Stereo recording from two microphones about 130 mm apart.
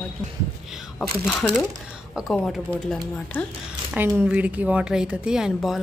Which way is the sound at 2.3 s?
5° left (ahead or behind).